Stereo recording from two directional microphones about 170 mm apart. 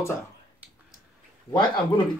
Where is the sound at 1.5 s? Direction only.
25° left (ahead or behind).